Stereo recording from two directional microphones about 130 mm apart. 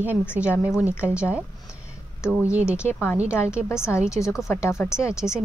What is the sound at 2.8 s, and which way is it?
A woman's voice, 15° left (ahead or behind).